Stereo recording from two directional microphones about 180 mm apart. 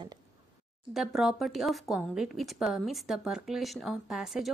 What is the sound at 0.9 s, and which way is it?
Speech, centre (ahead or behind).